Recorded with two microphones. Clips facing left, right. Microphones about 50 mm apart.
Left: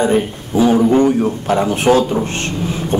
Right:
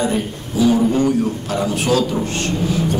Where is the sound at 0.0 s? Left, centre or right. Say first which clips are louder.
Left 5 dB; left.